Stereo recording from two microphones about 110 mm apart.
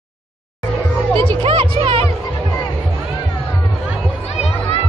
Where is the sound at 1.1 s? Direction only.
50° right (ahead or behind).